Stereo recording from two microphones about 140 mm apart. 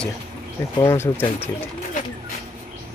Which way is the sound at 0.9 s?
15° left (ahead or behind).